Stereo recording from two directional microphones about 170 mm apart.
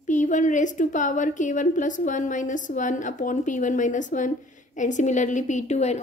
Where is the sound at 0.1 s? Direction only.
45° left (ahead or behind).